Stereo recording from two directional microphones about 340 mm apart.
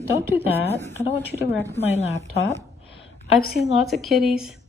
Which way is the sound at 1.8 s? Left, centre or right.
Centre.